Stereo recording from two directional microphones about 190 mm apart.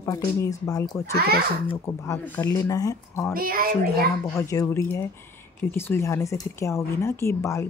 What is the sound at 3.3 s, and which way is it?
Speech, 50° right (ahead or behind).